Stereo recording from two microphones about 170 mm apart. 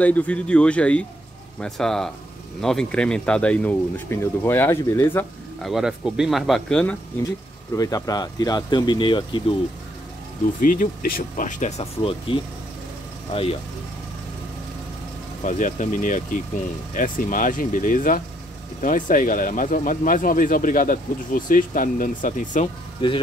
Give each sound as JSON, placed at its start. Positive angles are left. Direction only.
{"t": 0.0, "sound": "speech", "side_deg": 10}
{"t": 5.6, "sound": "speech", "side_deg": 0}
{"t": 7.7, "sound": "speech", "side_deg": 20}
{"t": 10.6, "sound": "speech", "side_deg": 55}
{"t": 15.4, "sound": "speech", "side_deg": 50}
{"t": 22.9, "sound": "speech", "side_deg": 30}